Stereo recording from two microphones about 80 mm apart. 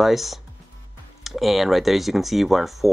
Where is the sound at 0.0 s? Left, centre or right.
Centre.